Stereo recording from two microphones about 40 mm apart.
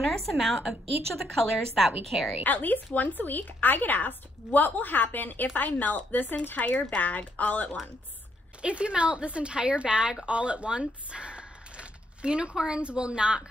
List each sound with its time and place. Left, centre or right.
0.1 s a woman's voice: centre
2.4 s speech: left
8.6 s a woman's voice: right